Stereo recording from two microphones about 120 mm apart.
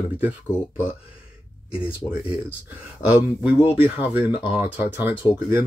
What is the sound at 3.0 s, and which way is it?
Speech, 10° right (ahead or behind).